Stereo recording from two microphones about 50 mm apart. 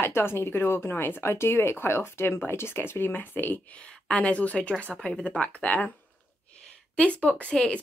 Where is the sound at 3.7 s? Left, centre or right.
Centre.